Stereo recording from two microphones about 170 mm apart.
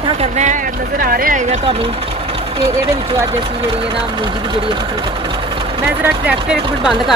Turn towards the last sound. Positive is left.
turn(degrees=-5)  # may be behind; listen again after turning